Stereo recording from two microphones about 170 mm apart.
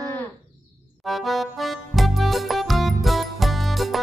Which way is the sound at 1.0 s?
Centre (ahead or behind).